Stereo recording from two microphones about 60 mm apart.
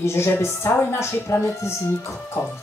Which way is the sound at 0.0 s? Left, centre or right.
Left.